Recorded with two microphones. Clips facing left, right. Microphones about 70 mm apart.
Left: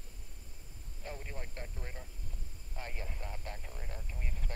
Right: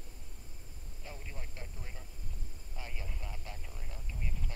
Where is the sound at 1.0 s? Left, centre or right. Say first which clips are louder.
Left 4 dB; left.